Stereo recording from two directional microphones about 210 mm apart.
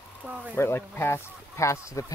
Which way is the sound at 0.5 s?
10° left (ahead or behind).